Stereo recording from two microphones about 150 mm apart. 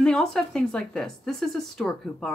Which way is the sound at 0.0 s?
5° left (ahead or behind).